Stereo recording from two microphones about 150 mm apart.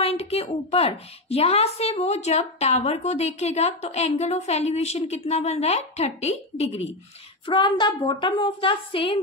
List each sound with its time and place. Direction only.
0.0 s a woman's voice: 40° left (ahead or behind)
7.4 s a woman's voice: 30° left (ahead or behind)